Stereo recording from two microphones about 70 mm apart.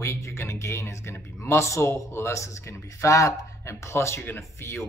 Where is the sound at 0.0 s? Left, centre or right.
Left.